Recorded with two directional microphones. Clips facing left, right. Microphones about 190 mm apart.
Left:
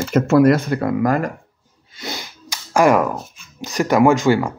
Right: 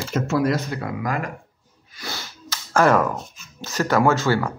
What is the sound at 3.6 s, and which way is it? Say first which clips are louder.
Speech: left 5 dB; 15° left (ahead or behind).